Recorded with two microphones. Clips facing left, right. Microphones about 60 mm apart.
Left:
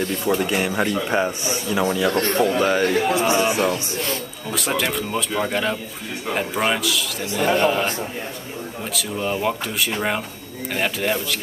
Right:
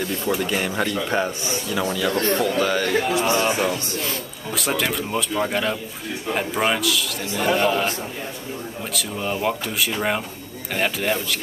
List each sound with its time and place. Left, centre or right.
0.0 s a man's voice: centre
0.4 s speech: centre
2.1 s speech: left; by 3.5 s centre
4.0 s a man's voice: centre
8.9 s a man's voice: centre